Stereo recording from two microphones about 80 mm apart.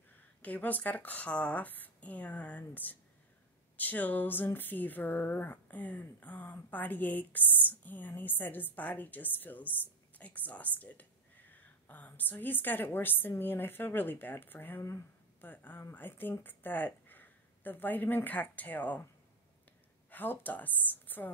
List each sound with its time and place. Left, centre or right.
0.1 s a sound: centre
15.9 s speech: left
20.1 s a woman's voice: left